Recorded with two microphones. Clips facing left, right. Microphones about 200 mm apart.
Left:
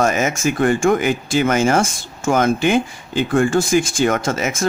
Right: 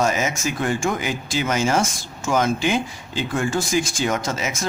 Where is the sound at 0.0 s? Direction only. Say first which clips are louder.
Left 4 dB; 55° left (ahead or behind).